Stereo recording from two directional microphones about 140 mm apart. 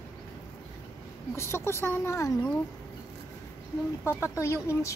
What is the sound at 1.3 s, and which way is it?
Speech, 20° left (ahead or behind).